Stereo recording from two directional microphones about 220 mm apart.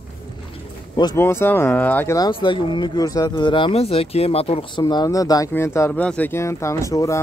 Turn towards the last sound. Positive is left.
turn(degrees=15)  # may be behind; listen again after turning